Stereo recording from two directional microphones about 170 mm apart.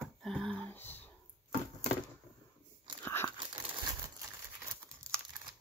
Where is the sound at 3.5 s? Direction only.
30° right (ahead or behind).